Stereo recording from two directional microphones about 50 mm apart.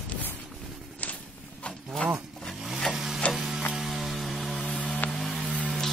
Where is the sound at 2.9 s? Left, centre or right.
Centre.